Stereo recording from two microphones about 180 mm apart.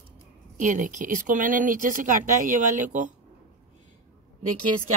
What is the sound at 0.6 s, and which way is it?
Speech, 45° right (ahead or behind).